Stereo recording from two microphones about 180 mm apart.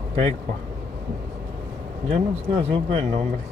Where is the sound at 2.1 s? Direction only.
35° right (ahead or behind).